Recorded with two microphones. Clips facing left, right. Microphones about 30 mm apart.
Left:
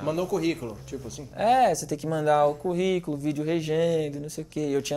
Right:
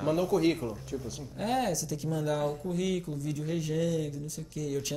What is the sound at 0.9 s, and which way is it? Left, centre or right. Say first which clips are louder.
Speech: left 1 dB; left.